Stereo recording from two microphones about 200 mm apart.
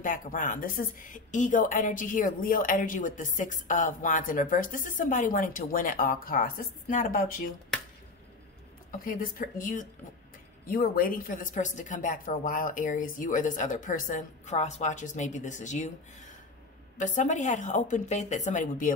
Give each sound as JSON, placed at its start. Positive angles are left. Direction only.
{"t": 0.0, "sound": "speech", "side_deg": 40}
{"t": 9.0, "sound": "speech", "side_deg": 45}
{"t": 16.9, "sound": "speech", "side_deg": 40}